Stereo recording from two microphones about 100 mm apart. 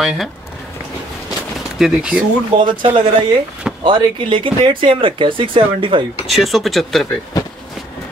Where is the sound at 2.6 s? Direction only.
50° right (ahead or behind).